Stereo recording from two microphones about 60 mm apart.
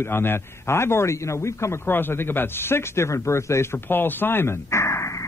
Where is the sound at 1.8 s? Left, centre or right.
Left.